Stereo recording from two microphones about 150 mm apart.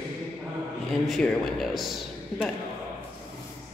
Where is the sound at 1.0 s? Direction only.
Centre (ahead or behind).